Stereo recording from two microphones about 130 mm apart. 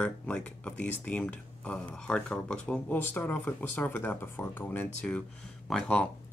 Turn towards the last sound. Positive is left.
turn(degrees=10)  # may be behind; listen again after turning